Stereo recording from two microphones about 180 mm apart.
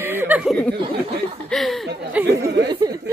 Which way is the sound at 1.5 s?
Centre (ahead or behind).